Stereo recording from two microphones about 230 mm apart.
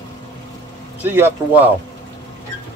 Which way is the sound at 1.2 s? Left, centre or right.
Centre.